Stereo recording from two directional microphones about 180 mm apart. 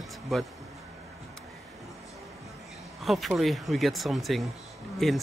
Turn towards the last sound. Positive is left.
turn(degrees=0)  # may be behind; listen again after turning